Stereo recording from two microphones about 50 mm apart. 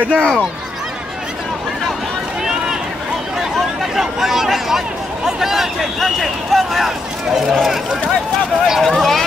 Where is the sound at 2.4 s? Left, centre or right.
Centre.